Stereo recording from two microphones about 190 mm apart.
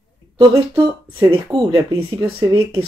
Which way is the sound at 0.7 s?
10° right (ahead or behind).